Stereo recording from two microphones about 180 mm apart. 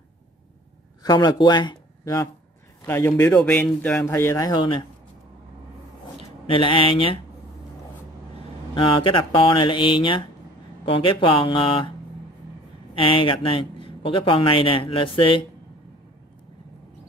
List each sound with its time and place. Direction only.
1.0 s speech: 20° left (ahead or behind)
3.4 s speech: 10° left (ahead or behind); by 4.8 s 25° left (ahead or behind)
6.4 s speech: 30° left (ahead or behind)
8.7 s speech: 30° left (ahead or behind)
12.9 s speech: 30° left (ahead or behind)